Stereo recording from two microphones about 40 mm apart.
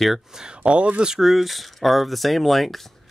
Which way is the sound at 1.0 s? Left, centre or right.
Centre.